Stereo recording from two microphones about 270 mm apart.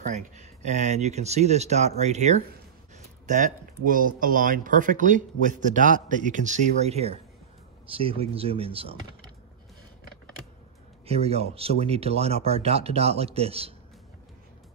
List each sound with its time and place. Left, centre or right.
0.0 s speech: right
11.1 s speech: right